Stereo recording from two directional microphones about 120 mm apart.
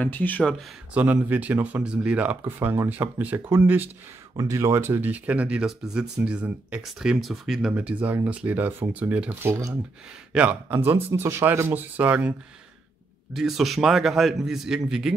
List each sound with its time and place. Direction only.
0.0 s speech: 15° left (ahead or behind)
0.9 s speech: 15° right (ahead or behind)
9.5 s speech: 25° right (ahead or behind)
10.3 s speech: 10° right (ahead or behind)
13.3 s a man's voice: centre (ahead or behind)